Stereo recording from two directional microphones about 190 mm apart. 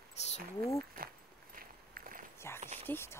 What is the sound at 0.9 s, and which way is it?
Walk, 50° right (ahead or behind).